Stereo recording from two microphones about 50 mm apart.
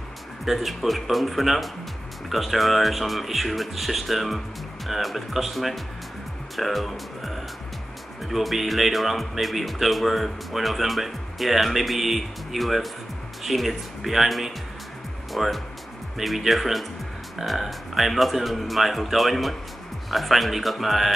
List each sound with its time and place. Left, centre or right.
0.5 s speech: centre